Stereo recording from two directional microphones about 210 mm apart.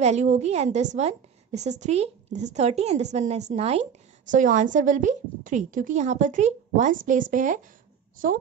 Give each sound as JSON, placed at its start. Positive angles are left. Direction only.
{"t": 0.0, "sound": "a woman's voice", "side_deg": -35}